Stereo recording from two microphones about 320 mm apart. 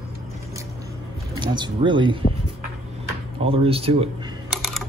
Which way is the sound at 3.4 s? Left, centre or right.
Centre.